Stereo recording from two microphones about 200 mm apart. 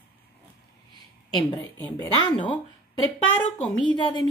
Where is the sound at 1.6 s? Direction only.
10° left (ahead or behind).